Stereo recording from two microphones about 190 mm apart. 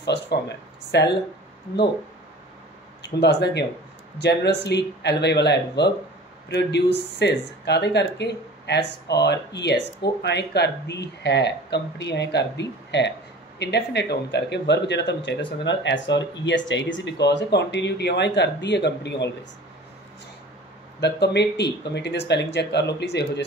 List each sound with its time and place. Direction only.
0.0 s speech: 65° left (ahead or behind)
3.0 s speech: 65° left (ahead or behind)
21.0 s speech: 65° left (ahead or behind)